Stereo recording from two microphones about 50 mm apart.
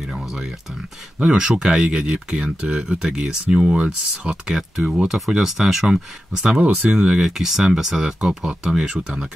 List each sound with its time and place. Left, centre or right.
1.2 s speech: centre
5.9 s speech: centre